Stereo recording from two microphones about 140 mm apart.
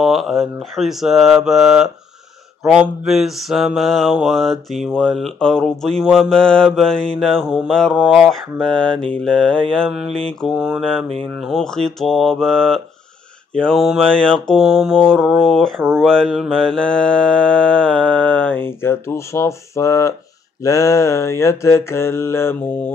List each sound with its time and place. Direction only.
0.0 s mantra: centre (ahead or behind); by 22.9 s 15° left (ahead or behind)